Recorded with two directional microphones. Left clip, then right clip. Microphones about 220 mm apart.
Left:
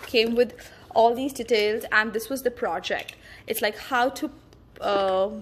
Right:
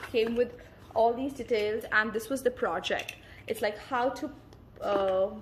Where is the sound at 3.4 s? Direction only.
30° left (ahead or behind).